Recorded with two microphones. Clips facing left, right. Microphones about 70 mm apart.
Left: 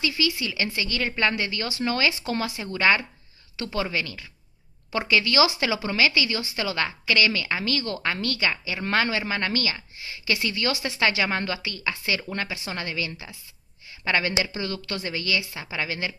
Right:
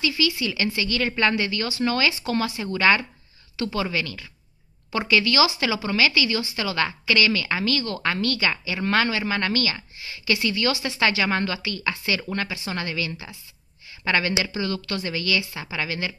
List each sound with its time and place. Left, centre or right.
0.0 s a woman's voice: centre
7.6 s a woman's voice: centre
8.8 s speech: centre
10.5 s a woman's voice: left
10.9 s speech: centre
14.6 s a woman's voice: centre